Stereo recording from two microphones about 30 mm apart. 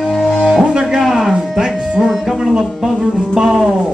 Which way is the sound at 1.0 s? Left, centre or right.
Centre.